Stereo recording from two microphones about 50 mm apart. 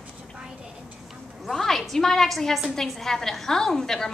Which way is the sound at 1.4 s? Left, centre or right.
Centre.